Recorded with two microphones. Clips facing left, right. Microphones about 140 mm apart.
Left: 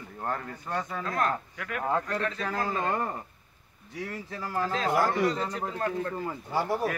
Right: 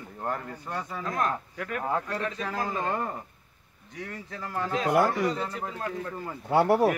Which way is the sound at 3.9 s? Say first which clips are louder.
Left 2 dB; 5° left (ahead or behind).